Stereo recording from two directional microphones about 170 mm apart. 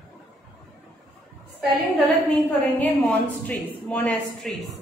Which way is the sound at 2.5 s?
10° left (ahead or behind).